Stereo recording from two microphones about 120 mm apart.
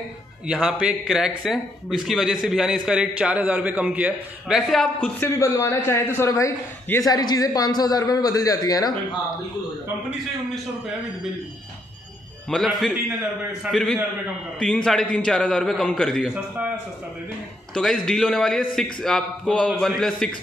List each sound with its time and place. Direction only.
0.5 s a man's voice: 5° right (ahead or behind)
5.2 s a man's voice: 25° left (ahead or behind)
12.4 s a man's voice: centre (ahead or behind)
17.7 s a man's voice: 5° left (ahead or behind)